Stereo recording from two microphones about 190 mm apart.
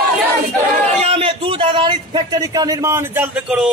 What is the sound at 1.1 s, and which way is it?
A man's voice, 30° right (ahead or behind).